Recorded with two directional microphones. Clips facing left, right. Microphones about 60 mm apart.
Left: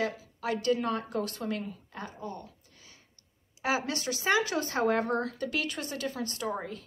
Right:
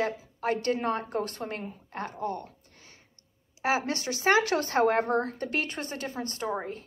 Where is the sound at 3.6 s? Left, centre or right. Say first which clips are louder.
Right 2 dB; right.